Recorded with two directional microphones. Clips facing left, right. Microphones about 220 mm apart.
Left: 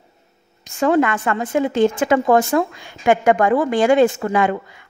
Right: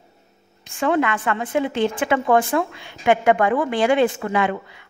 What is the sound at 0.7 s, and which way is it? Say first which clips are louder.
A woman's voice: left 4 dB; 40° left (ahead or behind).